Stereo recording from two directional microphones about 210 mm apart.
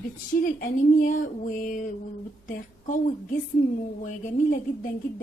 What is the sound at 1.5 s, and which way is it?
Speech, 40° left (ahead or behind).